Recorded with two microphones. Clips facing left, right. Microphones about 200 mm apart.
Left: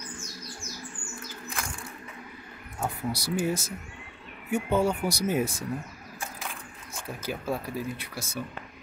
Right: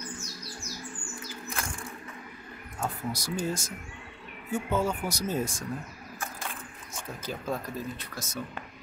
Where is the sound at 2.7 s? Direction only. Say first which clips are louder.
Left 2 dB; 10° left (ahead or behind).